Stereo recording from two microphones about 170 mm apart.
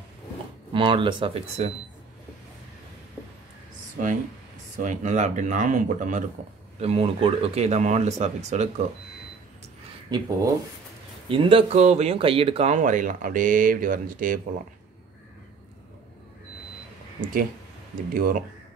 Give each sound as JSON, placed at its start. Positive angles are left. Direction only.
{"t": 0.7, "sound": "speech", "side_deg": -30}
{"t": 4.7, "sound": "speech", "side_deg": -50}
{"t": 6.8, "sound": "speech", "side_deg": -35}
{"t": 10.0, "sound": "speech", "side_deg": -25}
{"t": 17.2, "sound": "speech", "side_deg": -55}